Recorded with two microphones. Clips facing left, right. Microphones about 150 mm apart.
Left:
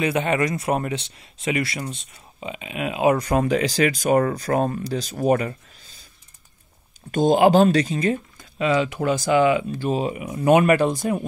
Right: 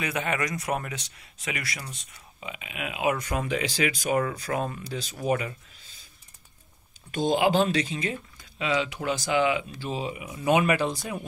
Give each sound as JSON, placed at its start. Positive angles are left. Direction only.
{"t": 0.0, "sound": "speech", "side_deg": 30}
{"t": 7.1, "sound": "speech", "side_deg": 45}